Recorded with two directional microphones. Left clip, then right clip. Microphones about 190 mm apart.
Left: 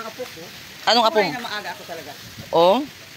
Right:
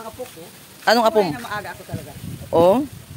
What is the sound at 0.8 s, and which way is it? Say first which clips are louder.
Speech: right 1 dB; 40° right (ahead or behind).